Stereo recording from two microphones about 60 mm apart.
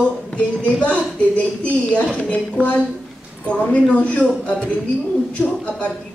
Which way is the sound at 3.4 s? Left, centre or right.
Left.